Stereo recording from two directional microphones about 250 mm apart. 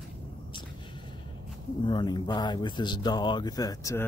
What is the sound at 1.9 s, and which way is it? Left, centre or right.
Speech, centre.